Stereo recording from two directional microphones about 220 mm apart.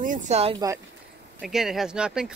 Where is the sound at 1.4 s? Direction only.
Centre (ahead or behind).